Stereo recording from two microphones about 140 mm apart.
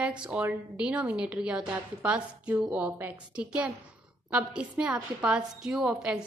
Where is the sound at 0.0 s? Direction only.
10° right (ahead or behind).